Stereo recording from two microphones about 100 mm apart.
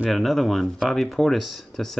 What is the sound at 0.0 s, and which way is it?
Speech, centre (ahead or behind).